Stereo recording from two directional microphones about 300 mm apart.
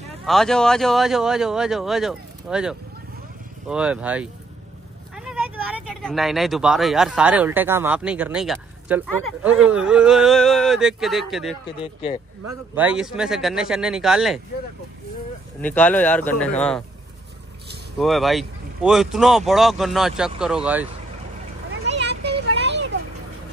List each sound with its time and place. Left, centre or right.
0.2 s speech: centre
11.6 s speech: centre
12.7 s speech: centre
15.6 s speech: centre
17.9 s speech: centre
21.8 s a sound: right